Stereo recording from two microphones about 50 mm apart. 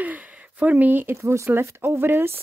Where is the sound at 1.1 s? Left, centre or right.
Right.